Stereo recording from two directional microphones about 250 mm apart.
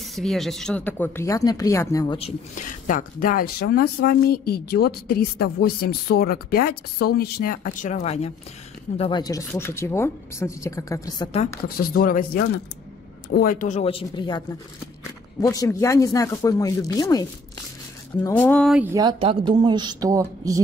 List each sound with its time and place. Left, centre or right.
0.0 s speech: centre
11.7 s speech: left; by 14.4 s centre
15.4 s speech: centre